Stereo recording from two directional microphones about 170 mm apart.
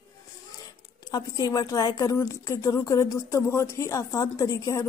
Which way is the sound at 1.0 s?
20° left (ahead or behind).